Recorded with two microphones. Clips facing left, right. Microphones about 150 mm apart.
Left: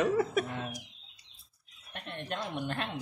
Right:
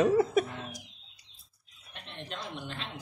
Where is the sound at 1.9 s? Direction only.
55° left (ahead or behind).